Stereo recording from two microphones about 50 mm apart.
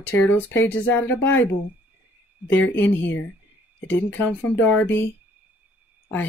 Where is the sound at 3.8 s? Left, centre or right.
Left.